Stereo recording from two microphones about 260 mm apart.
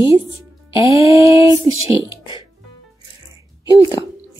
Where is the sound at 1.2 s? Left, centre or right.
Centre.